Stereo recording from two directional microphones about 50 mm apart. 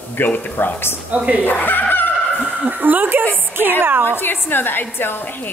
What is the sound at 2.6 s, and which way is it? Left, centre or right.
A woman's voice, right.